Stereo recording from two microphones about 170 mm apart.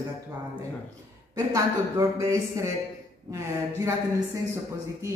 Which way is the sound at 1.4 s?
20° right (ahead or behind).